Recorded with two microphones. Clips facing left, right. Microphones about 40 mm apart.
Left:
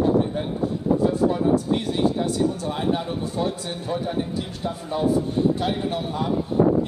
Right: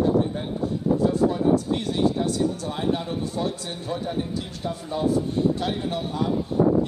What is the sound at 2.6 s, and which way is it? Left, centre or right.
Speech, left.